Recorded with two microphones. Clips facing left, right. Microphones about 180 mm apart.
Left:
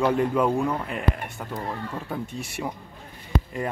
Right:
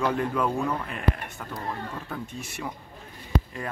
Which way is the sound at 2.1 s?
15° left (ahead or behind).